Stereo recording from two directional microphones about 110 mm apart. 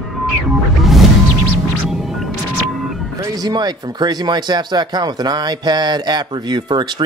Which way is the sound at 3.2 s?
40° right (ahead or behind).